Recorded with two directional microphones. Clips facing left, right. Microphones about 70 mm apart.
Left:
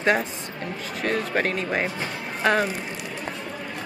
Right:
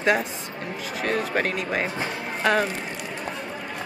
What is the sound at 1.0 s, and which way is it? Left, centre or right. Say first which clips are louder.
Speech: even; centre.